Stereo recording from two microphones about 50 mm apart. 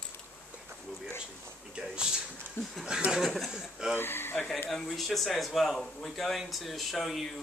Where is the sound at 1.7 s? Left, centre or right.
Centre.